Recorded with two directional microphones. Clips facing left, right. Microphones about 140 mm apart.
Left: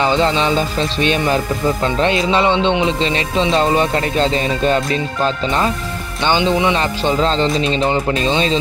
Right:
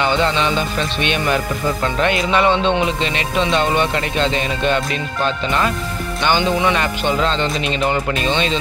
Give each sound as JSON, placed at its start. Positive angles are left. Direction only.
{"t": 0.0, "sound": "music", "side_deg": 30}